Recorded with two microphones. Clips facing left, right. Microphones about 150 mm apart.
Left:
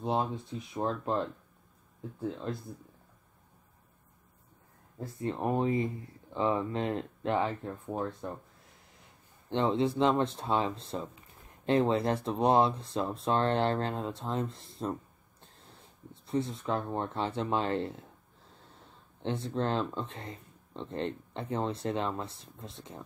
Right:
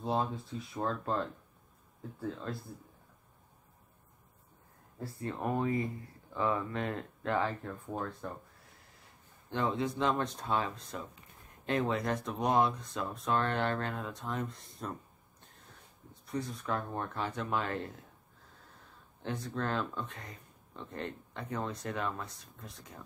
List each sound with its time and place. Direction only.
0.0 s speech: 20° left (ahead or behind)
4.9 s speech: 20° left (ahead or behind)
9.5 s speech: 25° left (ahead or behind)
19.2 s speech: 25° left (ahead or behind)